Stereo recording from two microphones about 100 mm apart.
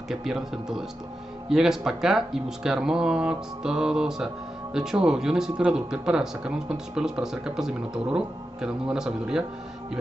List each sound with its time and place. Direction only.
0.1 s speech: 5° right (ahead or behind)